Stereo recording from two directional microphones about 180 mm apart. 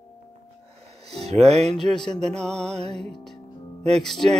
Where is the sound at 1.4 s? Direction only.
35° right (ahead or behind).